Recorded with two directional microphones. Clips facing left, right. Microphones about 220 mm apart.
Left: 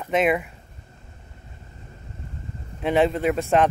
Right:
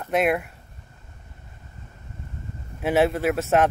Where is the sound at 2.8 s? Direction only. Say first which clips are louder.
Even; 5° right (ahead or behind).